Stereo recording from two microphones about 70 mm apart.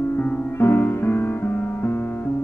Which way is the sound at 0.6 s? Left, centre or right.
Left.